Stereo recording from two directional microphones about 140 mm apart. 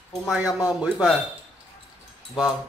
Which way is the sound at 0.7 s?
5° right (ahead or behind).